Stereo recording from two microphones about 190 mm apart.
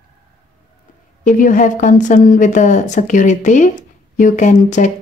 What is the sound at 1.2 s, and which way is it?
A woman's voice, 45° left (ahead or behind).